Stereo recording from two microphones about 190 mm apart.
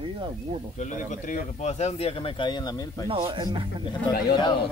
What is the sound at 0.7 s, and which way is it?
Speech, 40° left (ahead or behind).